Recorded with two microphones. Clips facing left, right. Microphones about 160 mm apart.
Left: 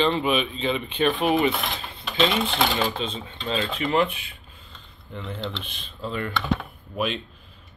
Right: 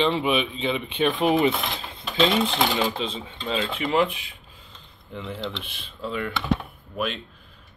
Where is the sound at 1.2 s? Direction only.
20° right (ahead or behind).